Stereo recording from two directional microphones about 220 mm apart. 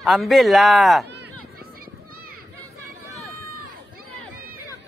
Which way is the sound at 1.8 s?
40° right (ahead or behind).